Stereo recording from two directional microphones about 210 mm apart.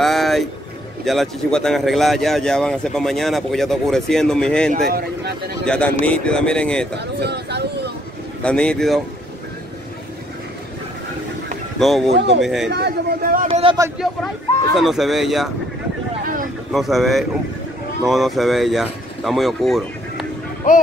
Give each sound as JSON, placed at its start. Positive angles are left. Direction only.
{"t": 0.0, "sound": "a sound", "side_deg": 0}
{"t": 1.0, "sound": "speech", "side_deg": 0}
{"t": 4.8, "sound": "speech", "side_deg": -45}
{"t": 5.7, "sound": "speech", "side_deg": 5}
{"t": 7.0, "sound": "speech", "side_deg": -50}
{"t": 8.4, "sound": "speech", "side_deg": 5}
{"t": 11.8, "sound": "speech", "side_deg": 0}
{"t": 12.6, "sound": "speech", "side_deg": -50}
{"t": 13.5, "sound": "speech", "side_deg": -25}
{"t": 14.8, "sound": "speech", "side_deg": 0}
{"t": 16.7, "sound": "speech", "side_deg": 0}